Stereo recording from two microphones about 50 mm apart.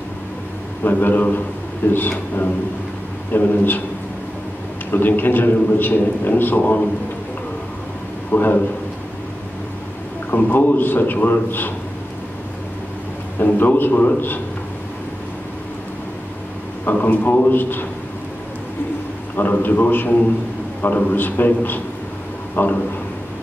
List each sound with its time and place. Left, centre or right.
0.8 s a man's voice: left
4.9 s a man's voice: left
8.3 s a man's voice: left
10.3 s a man's voice: left
13.4 s a man's voice: left
16.8 s a man's voice: left
19.3 s a man's voice: left